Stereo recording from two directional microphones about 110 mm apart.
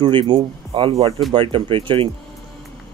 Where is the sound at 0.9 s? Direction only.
65° right (ahead or behind).